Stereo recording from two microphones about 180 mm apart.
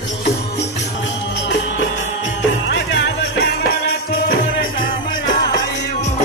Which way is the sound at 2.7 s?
75° left (ahead or behind).